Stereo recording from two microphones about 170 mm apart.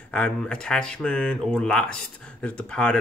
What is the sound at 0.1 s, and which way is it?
A man's voice, 5° left (ahead or behind).